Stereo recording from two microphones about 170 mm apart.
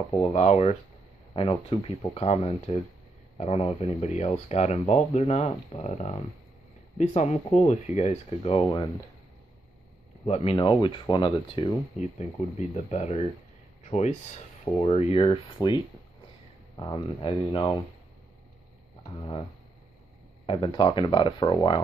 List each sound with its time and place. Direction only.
0.2 s speech: 40° left (ahead or behind)
10.2 s speech: 35° left (ahead or behind)
12.0 s speech: 40° left (ahead or behind); by 17.7 s 25° left (ahead or behind)
20.5 s speech: 30° left (ahead or behind)